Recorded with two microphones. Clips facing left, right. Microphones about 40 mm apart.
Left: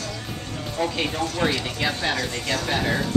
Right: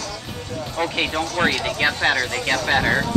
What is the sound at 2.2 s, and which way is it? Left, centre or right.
Speech, right.